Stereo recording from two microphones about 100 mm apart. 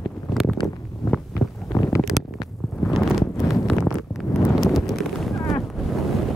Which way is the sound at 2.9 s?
Centre (ahead or behind).